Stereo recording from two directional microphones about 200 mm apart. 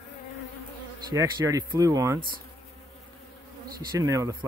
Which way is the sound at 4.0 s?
15° right (ahead or behind).